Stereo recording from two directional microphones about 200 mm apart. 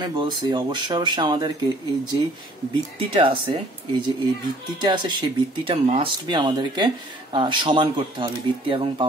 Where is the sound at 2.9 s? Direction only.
25° right (ahead or behind).